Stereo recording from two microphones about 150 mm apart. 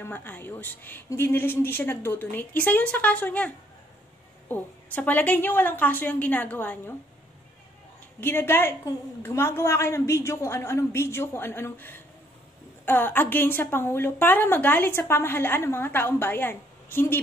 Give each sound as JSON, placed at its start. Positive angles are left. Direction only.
{"t": 0.0, "sound": "a woman's voice", "side_deg": 10}
{"t": 8.2, "sound": "a woman's voice", "side_deg": 15}